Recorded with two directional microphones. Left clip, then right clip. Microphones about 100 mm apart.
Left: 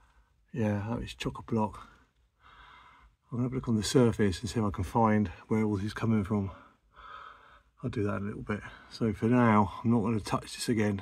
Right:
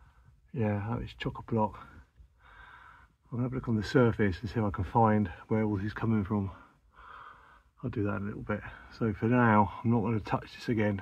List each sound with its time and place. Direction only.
0.5 s speech: 15° left (ahead or behind)
2.4 s snort: 25° left (ahead or behind)
3.3 s speech: 35° left (ahead or behind)
4.7 s speech: 10° left (ahead or behind)
5.6 s speech: 25° left (ahead or behind)